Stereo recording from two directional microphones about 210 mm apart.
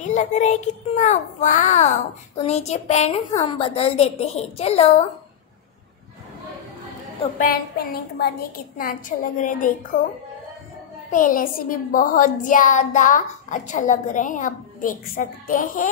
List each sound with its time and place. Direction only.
0.0 s a child's voice: 35° left (ahead or behind)
7.3 s child singing: 45° left (ahead or behind)
8.7 s a child's voice: 40° left (ahead or behind)
11.1 s a child's voice: 40° left (ahead or behind)